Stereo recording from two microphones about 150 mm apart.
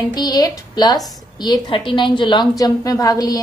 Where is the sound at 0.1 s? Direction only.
25° left (ahead or behind).